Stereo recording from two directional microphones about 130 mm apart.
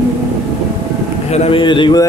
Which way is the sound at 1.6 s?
40° left (ahead or behind).